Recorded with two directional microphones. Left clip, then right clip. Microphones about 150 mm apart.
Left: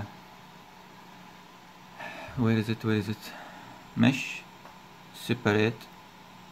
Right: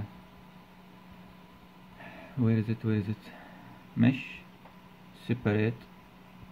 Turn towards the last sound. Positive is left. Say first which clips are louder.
# left 4 dB
turn(degrees=5)  # may be behind; listen again after turning